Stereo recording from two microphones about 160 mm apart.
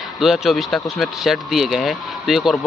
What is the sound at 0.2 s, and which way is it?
Speech, centre (ahead or behind).